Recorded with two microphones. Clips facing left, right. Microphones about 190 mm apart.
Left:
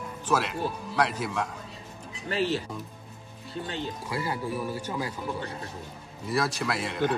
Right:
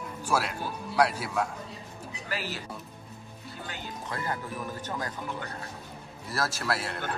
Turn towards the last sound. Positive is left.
turn(degrees=-5)  # may be behind; listen again after turning